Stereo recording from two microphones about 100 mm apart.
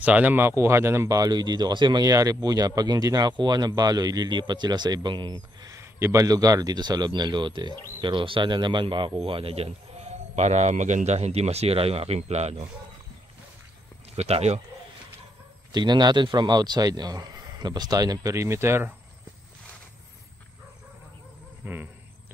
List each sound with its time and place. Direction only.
0.0 s speech: 15° right (ahead or behind); by 5.8 s 45° right (ahead or behind)
5.8 s speech: 30° right (ahead or behind); by 12.6 s 90° right
14.1 s speech: 90° right
15.7 s speech: 45° right (ahead or behind); by 18.9 s 25° right (ahead or behind)
21.6 s speech: 20° right (ahead or behind)